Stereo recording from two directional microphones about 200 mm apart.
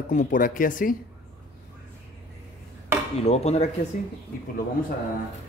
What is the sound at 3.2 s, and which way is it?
Speech, 30° left (ahead or behind).